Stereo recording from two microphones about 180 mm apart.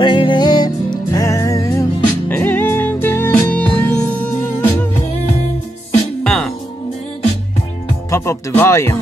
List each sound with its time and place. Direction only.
0.0 s music: 25° left (ahead or behind); by 4.8 s 10° left (ahead or behind)
6.2 s music: 5° left (ahead or behind)
8.1 s music: 15° left (ahead or behind)